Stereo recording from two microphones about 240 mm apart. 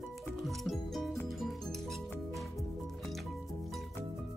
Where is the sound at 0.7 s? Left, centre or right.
Centre.